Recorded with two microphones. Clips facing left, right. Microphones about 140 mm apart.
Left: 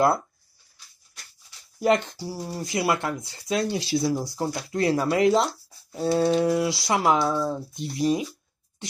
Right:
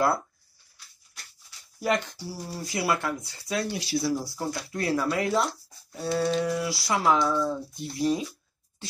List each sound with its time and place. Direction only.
1.8 s speech: 25° left (ahead or behind)
5.9 s a sound: 25° left (ahead or behind)
6.3 s speech: 25° left (ahead or behind)